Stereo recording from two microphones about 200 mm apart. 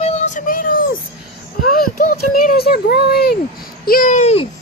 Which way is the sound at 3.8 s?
40° left (ahead or behind).